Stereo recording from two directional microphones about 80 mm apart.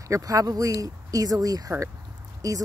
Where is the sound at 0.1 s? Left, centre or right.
Right.